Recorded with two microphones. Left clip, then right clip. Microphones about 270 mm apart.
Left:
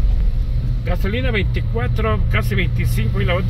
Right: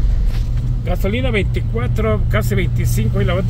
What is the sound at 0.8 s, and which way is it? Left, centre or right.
Speech, centre.